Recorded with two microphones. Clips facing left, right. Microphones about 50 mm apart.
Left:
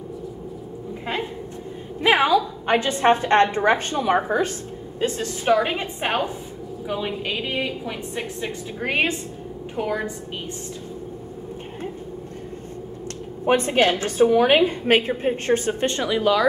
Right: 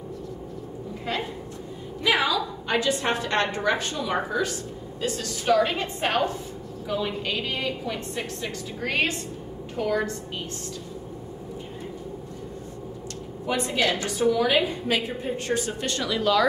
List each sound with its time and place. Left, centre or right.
2.0 s a woman's voice: left
13.5 s a woman's voice: left; by 16.4 s centre